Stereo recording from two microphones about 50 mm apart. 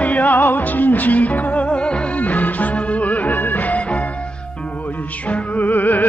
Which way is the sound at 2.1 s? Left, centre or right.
Left.